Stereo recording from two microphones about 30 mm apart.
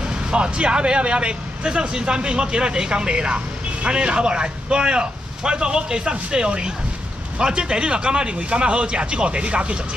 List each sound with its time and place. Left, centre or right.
0.3 s speech: right